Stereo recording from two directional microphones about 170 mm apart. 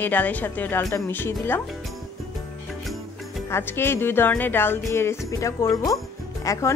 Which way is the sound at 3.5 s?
15° left (ahead or behind).